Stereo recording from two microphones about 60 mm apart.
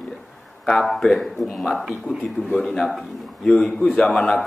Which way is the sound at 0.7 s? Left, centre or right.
Centre.